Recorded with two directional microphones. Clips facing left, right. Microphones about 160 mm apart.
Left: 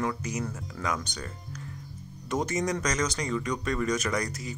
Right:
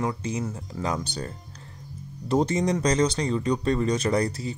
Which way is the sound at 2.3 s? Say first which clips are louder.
Right 5 dB; 30° right (ahead or behind).